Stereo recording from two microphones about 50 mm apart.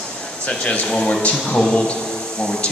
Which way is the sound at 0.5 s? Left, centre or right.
Centre.